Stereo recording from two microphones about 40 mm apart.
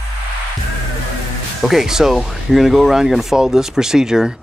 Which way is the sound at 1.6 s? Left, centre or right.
Centre.